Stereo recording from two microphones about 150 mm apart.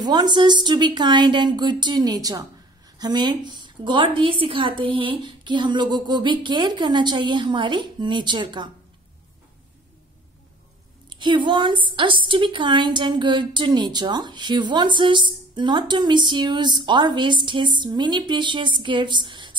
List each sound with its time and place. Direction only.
0.0 s a woman's voice: 30° right (ahead or behind)
11.1 s a woman's voice: 30° right (ahead or behind)